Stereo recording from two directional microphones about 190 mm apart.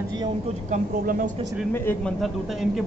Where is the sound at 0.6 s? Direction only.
45° right (ahead or behind).